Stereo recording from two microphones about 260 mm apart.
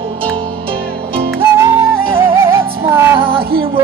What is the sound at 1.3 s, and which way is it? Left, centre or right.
Music, centre.